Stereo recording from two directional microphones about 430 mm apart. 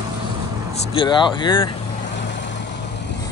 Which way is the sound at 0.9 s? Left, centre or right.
Centre.